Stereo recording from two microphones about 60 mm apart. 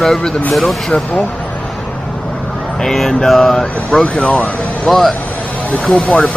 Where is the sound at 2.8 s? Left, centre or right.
Centre.